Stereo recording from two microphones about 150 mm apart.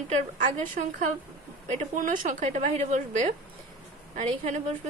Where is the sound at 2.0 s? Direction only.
60° right (ahead or behind).